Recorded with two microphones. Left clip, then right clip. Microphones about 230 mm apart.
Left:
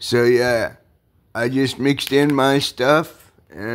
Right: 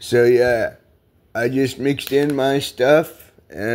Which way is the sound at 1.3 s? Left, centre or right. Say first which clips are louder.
Right 1 dB; centre.